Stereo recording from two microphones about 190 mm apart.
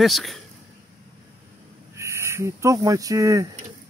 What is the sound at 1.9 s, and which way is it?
Speech, 15° right (ahead or behind).